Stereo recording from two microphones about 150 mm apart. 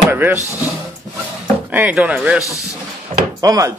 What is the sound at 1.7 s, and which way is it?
Speech, 10° right (ahead or behind).